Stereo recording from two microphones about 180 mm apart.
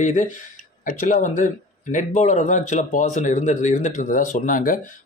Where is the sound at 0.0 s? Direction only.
40° left (ahead or behind).